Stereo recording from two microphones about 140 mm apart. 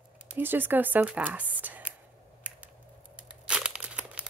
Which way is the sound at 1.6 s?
10° right (ahead or behind).